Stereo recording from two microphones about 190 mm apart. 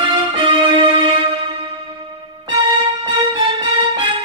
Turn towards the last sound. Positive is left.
turn(degrees=-25)  # may be behind; listen again after turning